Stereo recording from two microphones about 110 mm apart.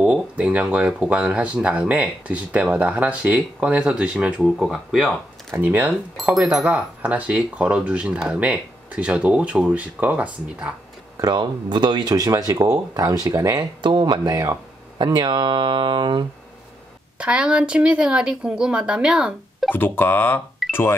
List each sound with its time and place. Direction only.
0.0 s speech: 10° right (ahead or behind)
5.5 s speech: 15° right (ahead or behind)
11.1 s speech: 40° right (ahead or behind)
14.3 s speech: 25° right (ahead or behind)
15.0 s speech: 40° right (ahead or behind)
17.2 s speech: 10° right (ahead or behind)
19.7 s speech: 20° left (ahead or behind)